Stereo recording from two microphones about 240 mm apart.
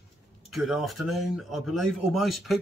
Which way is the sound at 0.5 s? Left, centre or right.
Centre.